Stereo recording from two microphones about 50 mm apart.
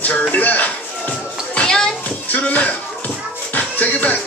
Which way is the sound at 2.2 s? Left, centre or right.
Left.